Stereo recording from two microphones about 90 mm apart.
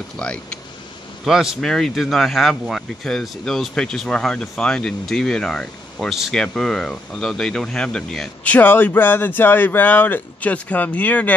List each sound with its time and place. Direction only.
0.2 s speech: 10° left (ahead or behind)
1.2 s speech: 5° right (ahead or behind)
8.5 s speech: 20° left (ahead or behind)